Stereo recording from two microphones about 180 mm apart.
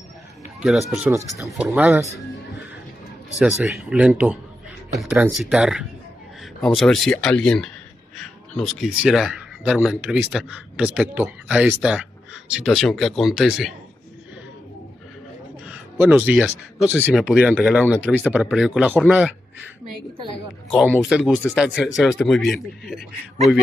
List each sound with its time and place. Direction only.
0.6 s speech: centre (ahead or behind)
1.7 s speech: 10° right (ahead or behind)
3.3 s speech: 5° right (ahead or behind)
15.7 s a sound: 5° right (ahead or behind)
16.4 s speech: centre (ahead or behind)
21.0 s speech: 5° right (ahead or behind)